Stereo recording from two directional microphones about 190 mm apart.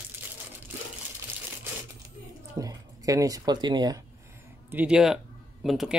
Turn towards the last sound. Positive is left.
turn(degrees=0)  # may be behind; listen again after turning